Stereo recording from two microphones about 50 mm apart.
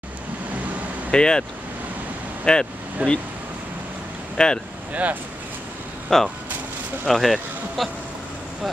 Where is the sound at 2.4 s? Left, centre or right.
Centre.